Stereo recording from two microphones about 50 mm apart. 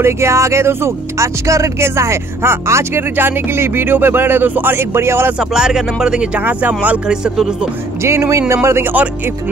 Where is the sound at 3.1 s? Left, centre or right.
Right.